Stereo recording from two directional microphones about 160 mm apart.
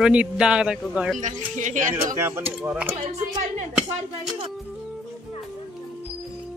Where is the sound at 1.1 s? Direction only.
50° right (ahead or behind).